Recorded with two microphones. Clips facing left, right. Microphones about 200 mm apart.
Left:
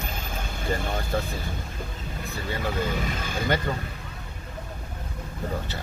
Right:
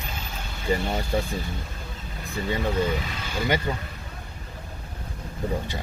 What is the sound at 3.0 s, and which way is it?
Speech, 50° left (ahead or behind).